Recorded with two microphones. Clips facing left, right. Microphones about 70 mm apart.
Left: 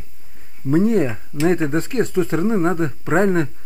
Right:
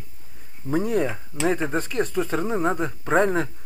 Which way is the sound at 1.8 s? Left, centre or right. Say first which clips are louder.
Left 5 dB; left.